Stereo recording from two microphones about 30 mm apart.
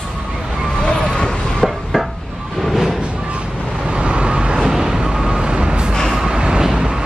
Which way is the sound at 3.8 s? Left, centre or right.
Right.